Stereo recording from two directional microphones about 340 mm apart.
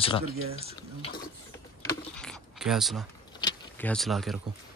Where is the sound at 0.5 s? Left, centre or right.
Centre.